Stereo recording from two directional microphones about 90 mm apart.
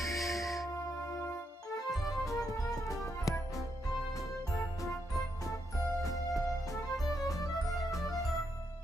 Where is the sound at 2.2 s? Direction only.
35° left (ahead or behind).